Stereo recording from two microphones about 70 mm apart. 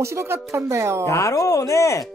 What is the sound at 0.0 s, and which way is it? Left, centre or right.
Speech, right.